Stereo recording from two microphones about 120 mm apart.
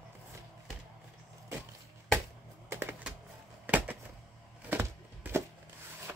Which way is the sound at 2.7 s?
20° right (ahead or behind).